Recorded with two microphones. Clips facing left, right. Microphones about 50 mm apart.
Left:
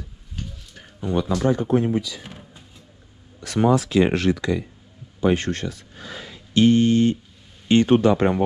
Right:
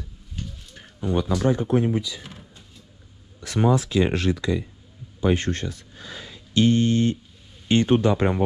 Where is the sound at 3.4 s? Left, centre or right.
Left.